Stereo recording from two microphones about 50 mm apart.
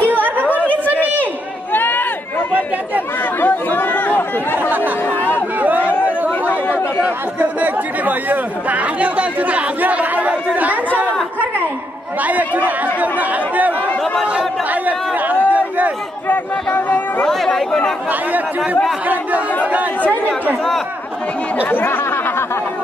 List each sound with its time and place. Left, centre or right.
0.5 s chatter: left
1.7 s a sound: left
3.3 s chatter: left
4.6 s chatter: right
12.2 s speech: right
14.7 s chatter: right
16.3 s speech: left
17.3 s speech: centre